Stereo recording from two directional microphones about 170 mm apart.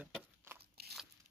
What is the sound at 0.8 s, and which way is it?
Biting, 65° right (ahead or behind).